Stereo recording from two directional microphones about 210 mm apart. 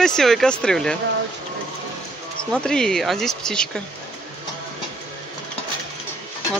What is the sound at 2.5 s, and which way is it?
Speech, 5° left (ahead or behind).